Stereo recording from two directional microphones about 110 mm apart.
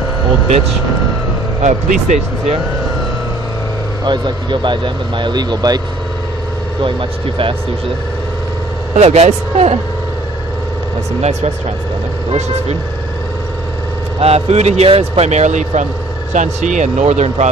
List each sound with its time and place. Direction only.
1.6 s speech: 90° right
4.0 s speech: 45° right (ahead or behind)
6.8 s speech: 50° right (ahead or behind)
8.9 s speech: 85° right
11.1 s speech: 80° right
14.2 s speech: 80° right